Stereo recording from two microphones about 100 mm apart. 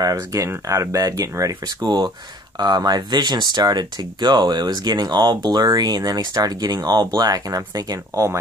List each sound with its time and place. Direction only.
0.0 s speech: 35° right (ahead or behind)